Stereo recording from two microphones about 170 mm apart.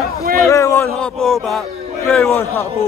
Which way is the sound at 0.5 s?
15° left (ahead or behind).